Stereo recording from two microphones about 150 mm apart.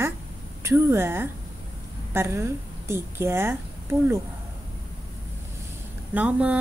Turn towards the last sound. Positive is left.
turn(degrees=-10)  # may be behind; listen again after turning